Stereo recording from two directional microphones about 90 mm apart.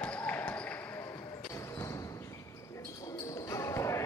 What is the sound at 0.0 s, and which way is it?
Basketball bounce, 10° left (ahead or behind).